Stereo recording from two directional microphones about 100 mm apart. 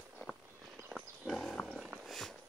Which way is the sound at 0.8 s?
Centre (ahead or behind).